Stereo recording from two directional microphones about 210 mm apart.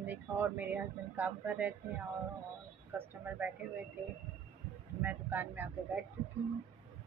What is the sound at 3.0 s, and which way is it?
Speech, 10° right (ahead or behind).